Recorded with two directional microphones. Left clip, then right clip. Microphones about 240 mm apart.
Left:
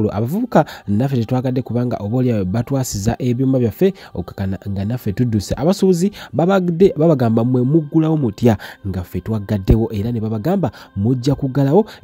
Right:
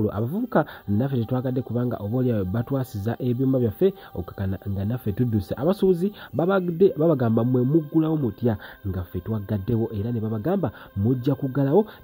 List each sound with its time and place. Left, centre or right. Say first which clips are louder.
0.0 s speech: left 6 dB; left